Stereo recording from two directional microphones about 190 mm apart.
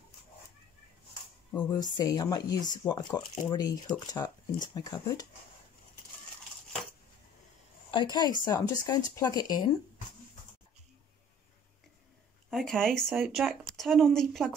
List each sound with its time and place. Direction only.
1.5 s speech: 20° left (ahead or behind)
7.9 s speech: 25° left (ahead or behind)
12.4 s speech: centre (ahead or behind)